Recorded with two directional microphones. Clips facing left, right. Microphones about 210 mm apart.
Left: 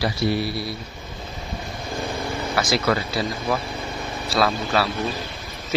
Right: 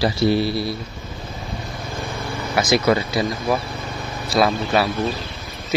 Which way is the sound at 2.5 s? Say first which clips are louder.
Right 5 dB; 20° right (ahead or behind).